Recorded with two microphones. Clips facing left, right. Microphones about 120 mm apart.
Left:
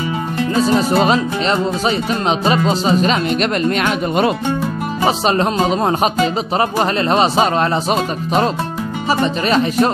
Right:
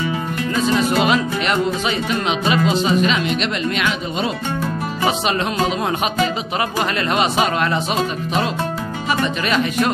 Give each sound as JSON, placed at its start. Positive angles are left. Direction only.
{"t": 0.6, "sound": "speech", "side_deg": 35}
{"t": 7.1, "sound": "speech", "side_deg": 35}
{"t": 7.9, "sound": "speech", "side_deg": 45}